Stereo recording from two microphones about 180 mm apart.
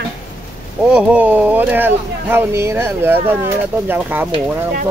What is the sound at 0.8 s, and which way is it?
Speech, 5° right (ahead or behind).